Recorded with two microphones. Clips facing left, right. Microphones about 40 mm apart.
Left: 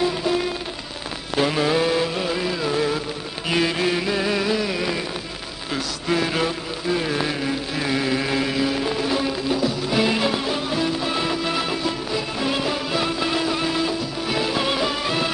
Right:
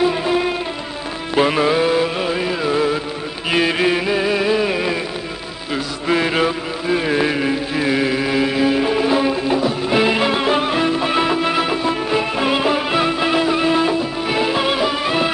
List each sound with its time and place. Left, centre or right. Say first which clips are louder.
0.0 s music: right 5 dB; right
1.7 s mantra: right 4 dB; centre
2.1 s music: right 4 dB; right
10.4 s music: right 6 dB; right